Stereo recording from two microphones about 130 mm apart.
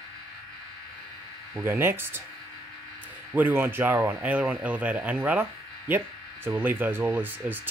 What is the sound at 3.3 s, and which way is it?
A man's voice, 15° right (ahead or behind).